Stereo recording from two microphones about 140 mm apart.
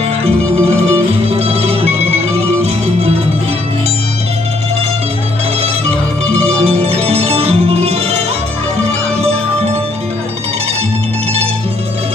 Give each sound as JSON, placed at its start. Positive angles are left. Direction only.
{"t": 0.2, "sound": "music", "side_deg": -50}
{"t": 6.3, "sound": "music", "side_deg": -50}